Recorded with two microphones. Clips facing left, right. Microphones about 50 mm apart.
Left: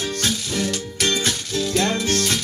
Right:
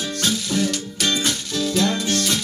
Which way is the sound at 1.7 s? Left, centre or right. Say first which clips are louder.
Even; left.